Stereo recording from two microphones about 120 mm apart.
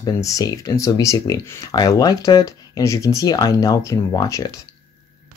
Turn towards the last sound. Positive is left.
turn(degrees=30)  # may be behind; listen again after turning